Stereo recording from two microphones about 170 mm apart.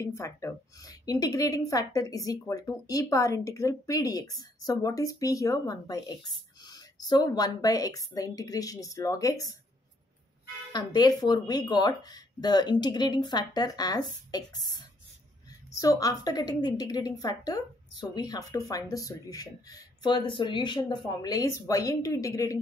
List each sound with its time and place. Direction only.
0.0 s a woman's voice: 15° left (ahead or behind)
10.7 s a woman's voice: 25° left (ahead or behind)